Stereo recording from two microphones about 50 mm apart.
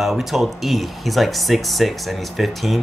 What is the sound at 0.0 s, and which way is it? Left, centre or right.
Speech, centre.